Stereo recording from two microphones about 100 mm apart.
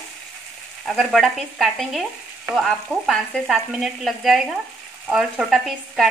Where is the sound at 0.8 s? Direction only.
Centre (ahead or behind).